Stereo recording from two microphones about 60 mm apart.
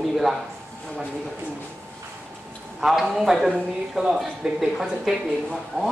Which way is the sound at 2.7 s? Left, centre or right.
Centre.